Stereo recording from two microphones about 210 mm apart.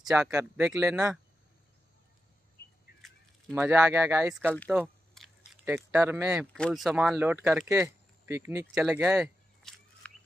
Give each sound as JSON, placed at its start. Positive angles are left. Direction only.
{"t": 0.0, "sound": "speech", "side_deg": -5}
{"t": 2.6, "sound": "a sound", "side_deg": 50}
{"t": 3.5, "sound": "speech", "side_deg": -10}
{"t": 5.1, "sound": "chewing", "side_deg": 0}
{"t": 5.9, "sound": "speech", "side_deg": -10}